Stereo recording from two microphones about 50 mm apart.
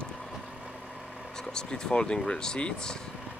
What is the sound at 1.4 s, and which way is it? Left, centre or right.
Speech, centre.